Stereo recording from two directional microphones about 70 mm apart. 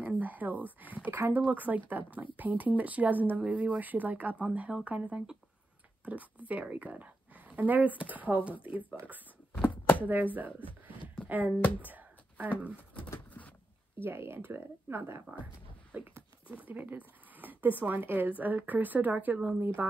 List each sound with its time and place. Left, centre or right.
0.0 s speech: right
6.4 s speech: right
9.5 s a sound: left
11.2 s speech: right
11.8 s a sound: right
14.0 s speech: right; by 19.6 s centre
19.6 s speech: right